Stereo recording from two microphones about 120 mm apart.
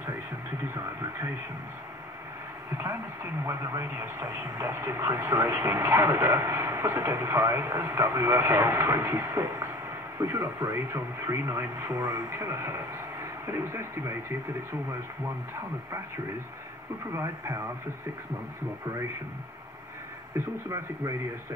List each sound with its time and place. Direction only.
3.4 s speech: 20° right (ahead or behind)
17.1 s speech: 25° right (ahead or behind)
20.4 s speech: 20° right (ahead or behind)